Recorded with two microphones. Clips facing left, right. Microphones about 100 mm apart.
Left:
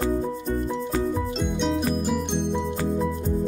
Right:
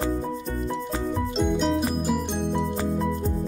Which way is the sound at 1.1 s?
Centre (ahead or behind).